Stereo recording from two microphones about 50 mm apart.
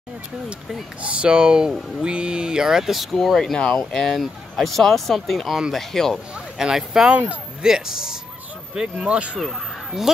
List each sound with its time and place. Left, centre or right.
1.0 s speech: right; by 3.2 s centre
3.3 s speech: centre
6.6 s speech: centre
10.1 s speech: centre